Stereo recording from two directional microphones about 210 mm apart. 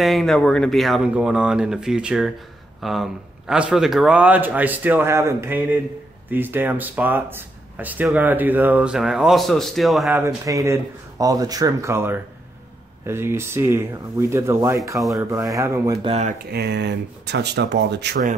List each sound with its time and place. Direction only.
0.0 s speech: centre (ahead or behind)
10.1 s speech: 15° right (ahead or behind)
16.4 s speech: 50° right (ahead or behind)